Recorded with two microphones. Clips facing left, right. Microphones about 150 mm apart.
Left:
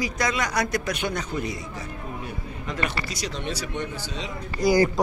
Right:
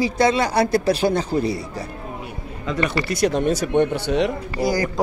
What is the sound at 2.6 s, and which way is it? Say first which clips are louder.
Speech: right 7 dB; 60° right (ahead or behind).